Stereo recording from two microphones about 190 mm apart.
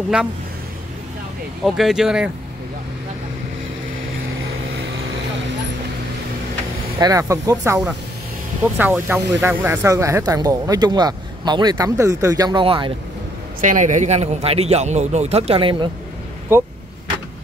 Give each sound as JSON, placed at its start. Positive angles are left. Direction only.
{"t": 1.6, "sound": "speech", "side_deg": 0}
{"t": 7.0, "sound": "speech", "side_deg": -15}
{"t": 13.6, "sound": "speech", "side_deg": -40}
{"t": 16.5, "sound": "speech", "side_deg": -10}